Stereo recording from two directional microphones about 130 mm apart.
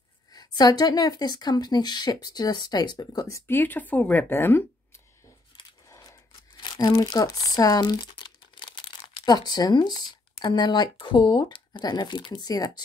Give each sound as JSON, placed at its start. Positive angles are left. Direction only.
{"t": 0.3, "sound": "a woman's voice", "side_deg": 30}
{"t": 5.9, "sound": "tearing", "side_deg": 30}
{"t": 10.3, "sound": "a woman's voice", "side_deg": 35}